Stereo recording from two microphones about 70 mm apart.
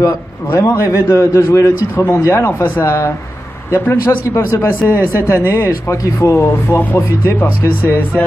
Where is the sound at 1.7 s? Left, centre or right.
Left.